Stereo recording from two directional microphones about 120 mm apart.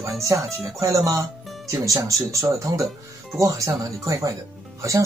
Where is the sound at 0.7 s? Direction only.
25° right (ahead or behind).